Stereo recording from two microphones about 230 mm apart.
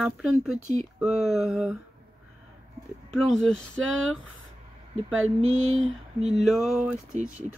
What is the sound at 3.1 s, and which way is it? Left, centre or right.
Speech, centre.